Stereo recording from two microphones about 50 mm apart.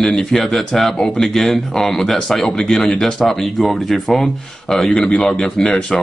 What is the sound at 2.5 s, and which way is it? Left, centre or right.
Speech, centre.